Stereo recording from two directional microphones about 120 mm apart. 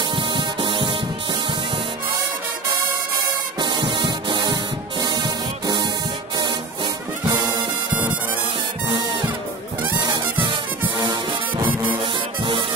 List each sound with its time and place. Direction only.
0.1 s music: 40° right (ahead or behind)
3.5 s music: 40° right (ahead or behind)
7.2 s music: 40° right (ahead or behind)
8.8 s music: 45° right (ahead or behind)